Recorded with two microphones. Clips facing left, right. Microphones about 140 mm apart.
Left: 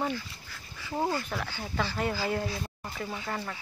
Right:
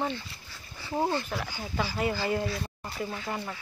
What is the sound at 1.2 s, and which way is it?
Speech, 5° right (ahead or behind).